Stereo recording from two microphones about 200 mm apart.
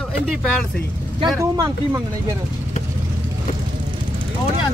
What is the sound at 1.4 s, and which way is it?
Speech, 15° right (ahead or behind).